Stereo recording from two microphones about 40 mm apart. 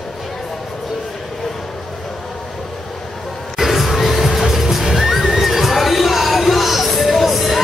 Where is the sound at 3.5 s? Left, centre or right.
Centre.